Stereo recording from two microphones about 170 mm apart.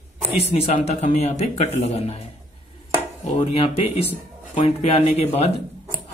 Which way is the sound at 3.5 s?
35° left (ahead or behind).